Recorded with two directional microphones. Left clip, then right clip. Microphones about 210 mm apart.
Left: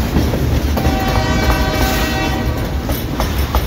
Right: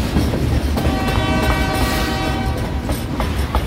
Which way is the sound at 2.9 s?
55° left (ahead or behind).